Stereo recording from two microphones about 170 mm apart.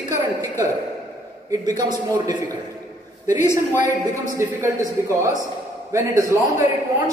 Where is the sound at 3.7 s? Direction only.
50° left (ahead or behind).